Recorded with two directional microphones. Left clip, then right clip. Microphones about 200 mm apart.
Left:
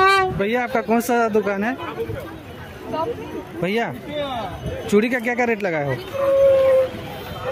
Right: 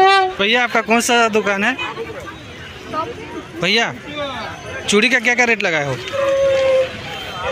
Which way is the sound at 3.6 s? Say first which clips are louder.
Right 6 dB; 10° left (ahead or behind).